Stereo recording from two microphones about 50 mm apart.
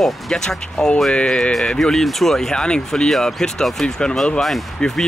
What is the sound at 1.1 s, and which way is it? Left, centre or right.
Speech, left.